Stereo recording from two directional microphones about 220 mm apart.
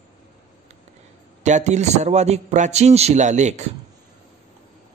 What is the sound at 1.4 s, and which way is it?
A man's voice, 30° right (ahead or behind).